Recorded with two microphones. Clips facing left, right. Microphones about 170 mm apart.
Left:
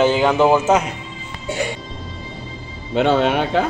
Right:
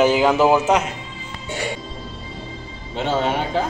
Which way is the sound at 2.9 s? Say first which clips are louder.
Left 5 dB; 70° left (ahead or behind).